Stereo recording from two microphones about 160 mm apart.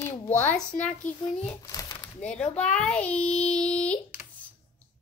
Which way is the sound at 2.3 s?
5° left (ahead or behind).